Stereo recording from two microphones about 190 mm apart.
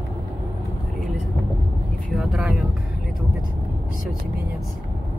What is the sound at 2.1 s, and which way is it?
Speech, 5° right (ahead or behind).